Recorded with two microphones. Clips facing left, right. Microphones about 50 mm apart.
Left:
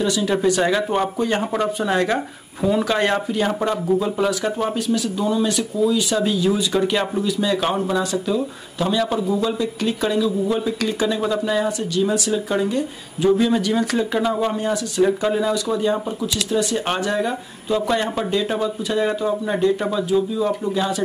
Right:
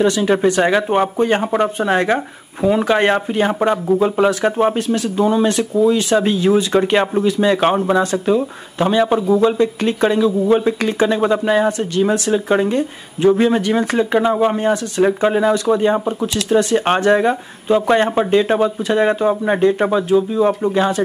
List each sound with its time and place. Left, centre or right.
0.0 s speech: right
1.4 s speech: centre; by 21.0 s right